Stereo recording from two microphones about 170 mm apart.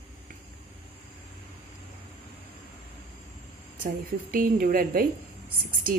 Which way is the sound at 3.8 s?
55° right (ahead or behind).